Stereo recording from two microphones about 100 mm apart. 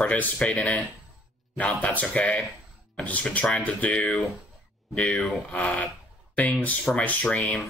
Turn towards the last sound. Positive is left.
turn(degrees=10)  # may be behind; listen again after turning